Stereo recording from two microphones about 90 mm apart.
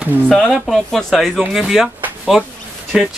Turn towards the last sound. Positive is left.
turn(degrees=-10)  # may be behind; listen again after turning